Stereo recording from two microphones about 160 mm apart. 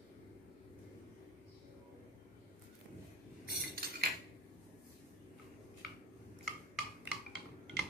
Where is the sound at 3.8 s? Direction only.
75° right (ahead or behind).